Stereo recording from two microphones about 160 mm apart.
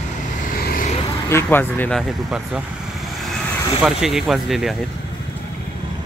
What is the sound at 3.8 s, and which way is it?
Speech, centre (ahead or behind).